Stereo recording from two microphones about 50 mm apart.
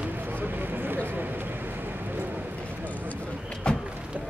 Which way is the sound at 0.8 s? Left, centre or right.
Right.